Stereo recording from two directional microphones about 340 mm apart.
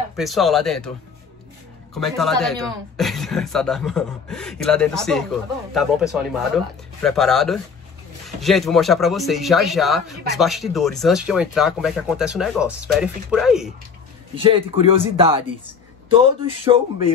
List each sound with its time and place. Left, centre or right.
0.1 s speech: centre
2.0 s speech: centre
14.3 s speech: centre
16.4 s speech: centre